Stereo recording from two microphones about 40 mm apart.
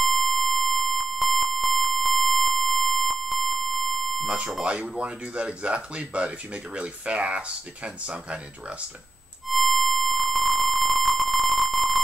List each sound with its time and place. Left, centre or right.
0.0 s a sound: centre
4.6 s speech: right
9.5 s music: centre